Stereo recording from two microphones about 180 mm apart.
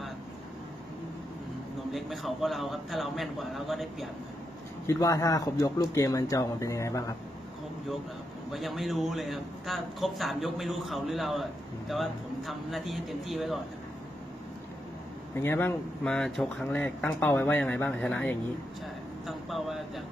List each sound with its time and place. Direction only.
1.9 s a man's voice: centre (ahead or behind)
4.8 s speech: 15° left (ahead or behind)
8.5 s a man's voice: centre (ahead or behind)
15.3 s speech: 15° left (ahead or behind)
19.2 s a sound: centre (ahead or behind)